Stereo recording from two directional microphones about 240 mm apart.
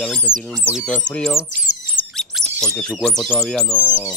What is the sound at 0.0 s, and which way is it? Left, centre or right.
Speech, centre.